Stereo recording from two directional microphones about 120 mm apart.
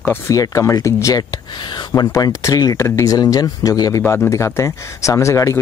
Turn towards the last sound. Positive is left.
turn(degrees=25)  # may be behind; listen again after turning